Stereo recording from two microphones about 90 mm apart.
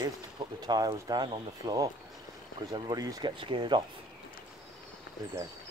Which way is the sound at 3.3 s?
70° right (ahead or behind).